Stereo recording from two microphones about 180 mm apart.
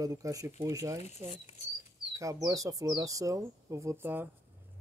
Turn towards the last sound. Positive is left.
turn(degrees=-10)  # may be behind; listen again after turning